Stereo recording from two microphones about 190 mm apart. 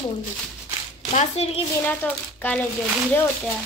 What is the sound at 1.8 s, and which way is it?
Speech, 10° left (ahead or behind).